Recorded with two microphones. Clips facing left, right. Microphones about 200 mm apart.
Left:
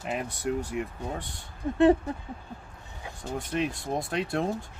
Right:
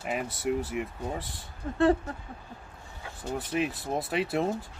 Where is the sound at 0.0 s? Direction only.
Centre (ahead or behind).